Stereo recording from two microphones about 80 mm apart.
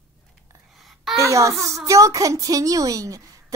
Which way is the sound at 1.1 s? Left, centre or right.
Right.